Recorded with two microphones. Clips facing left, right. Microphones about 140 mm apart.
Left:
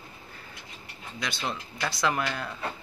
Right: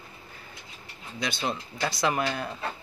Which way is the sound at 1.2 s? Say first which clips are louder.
Right 3 dB; 25° right (ahead or behind).